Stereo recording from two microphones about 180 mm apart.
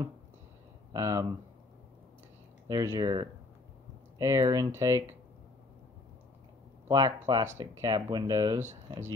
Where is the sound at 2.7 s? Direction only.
20° right (ahead or behind).